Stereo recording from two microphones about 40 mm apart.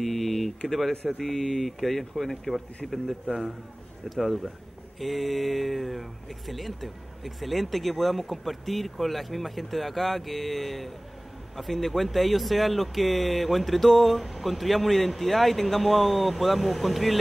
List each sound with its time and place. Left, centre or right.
0.0 s a sound: centre
0.7 s speech: centre
4.1 s speech: centre